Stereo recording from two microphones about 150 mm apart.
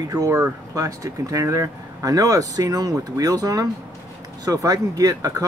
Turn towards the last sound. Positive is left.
turn(degrees=-20)  # may be behind; listen again after turning